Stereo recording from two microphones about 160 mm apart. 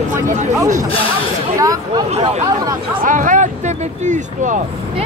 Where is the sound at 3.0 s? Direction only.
55° right (ahead or behind).